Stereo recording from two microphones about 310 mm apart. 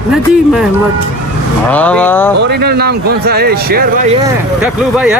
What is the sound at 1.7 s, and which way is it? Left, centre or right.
Speech, centre.